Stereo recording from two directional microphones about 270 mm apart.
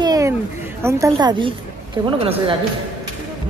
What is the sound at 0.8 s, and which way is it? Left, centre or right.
Speech, centre.